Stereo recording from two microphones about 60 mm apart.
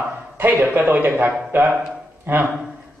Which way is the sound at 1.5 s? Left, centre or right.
Right.